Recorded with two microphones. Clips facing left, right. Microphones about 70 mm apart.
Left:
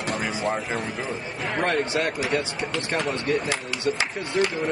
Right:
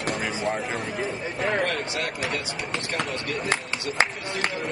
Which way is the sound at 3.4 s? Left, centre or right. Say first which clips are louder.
Left 2 dB; right.